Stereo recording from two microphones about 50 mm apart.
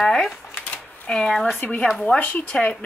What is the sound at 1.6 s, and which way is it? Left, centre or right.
Speech, left.